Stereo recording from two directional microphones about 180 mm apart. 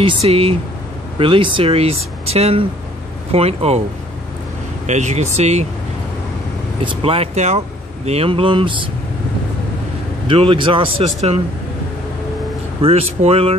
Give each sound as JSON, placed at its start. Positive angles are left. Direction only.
{"t": 0.0, "sound": "speech", "side_deg": -35}
{"t": 4.8, "sound": "speech", "side_deg": -40}
{"t": 6.8, "sound": "speech", "side_deg": -30}
{"t": 10.2, "sound": "speech", "side_deg": -30}
{"t": 12.8, "sound": "speech", "side_deg": -35}